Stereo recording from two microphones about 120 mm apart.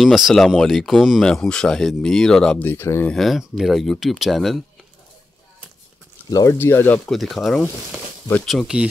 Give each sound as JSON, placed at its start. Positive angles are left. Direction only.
{"t": 0.0, "sound": "speech", "side_deg": 0}
{"t": 3.1, "sound": "speech", "side_deg": 0}
{"t": 6.3, "sound": "speech", "side_deg": 25}
{"t": 7.1, "sound": "speech", "side_deg": 0}
{"t": 8.5, "sound": "speech", "side_deg": -5}